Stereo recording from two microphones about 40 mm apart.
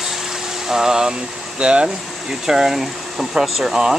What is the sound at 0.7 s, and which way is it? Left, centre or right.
Speech, centre.